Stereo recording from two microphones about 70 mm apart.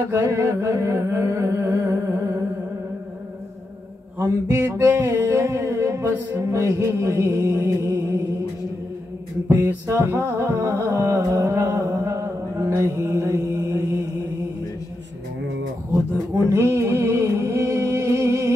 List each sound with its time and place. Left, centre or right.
0.1 s music: right
4.5 s music: right
9.8 s music: right
15.9 s music: right